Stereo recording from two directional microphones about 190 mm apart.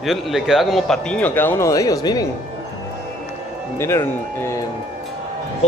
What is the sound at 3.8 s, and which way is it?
Speech, 15° left (ahead or behind).